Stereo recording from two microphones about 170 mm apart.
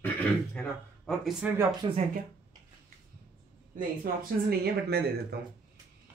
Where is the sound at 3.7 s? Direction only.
60° right (ahead or behind).